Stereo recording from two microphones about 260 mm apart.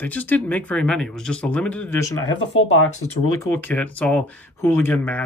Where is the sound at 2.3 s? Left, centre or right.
Left.